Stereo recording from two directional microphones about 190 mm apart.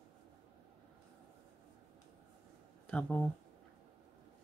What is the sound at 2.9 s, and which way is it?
Speech, 5° left (ahead or behind).